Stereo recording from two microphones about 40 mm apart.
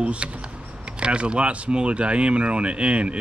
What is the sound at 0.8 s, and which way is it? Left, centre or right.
Speech, right.